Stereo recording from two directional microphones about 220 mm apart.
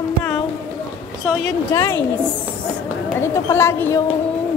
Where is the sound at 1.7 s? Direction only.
15° left (ahead or behind).